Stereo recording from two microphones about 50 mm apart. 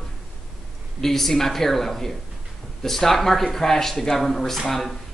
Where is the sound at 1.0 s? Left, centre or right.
Centre.